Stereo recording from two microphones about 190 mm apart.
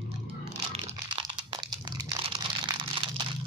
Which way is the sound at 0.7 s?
30° right (ahead or behind).